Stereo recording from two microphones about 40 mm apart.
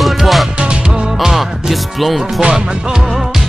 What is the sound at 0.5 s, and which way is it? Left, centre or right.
Music, right.